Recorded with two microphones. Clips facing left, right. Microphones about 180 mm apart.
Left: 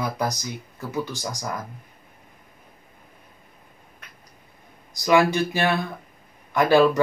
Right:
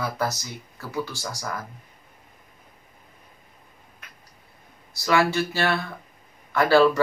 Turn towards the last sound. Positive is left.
turn(degrees=15)  # may be behind; listen again after turning